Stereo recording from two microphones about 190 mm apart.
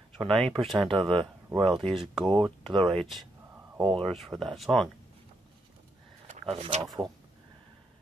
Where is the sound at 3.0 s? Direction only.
Centre (ahead or behind).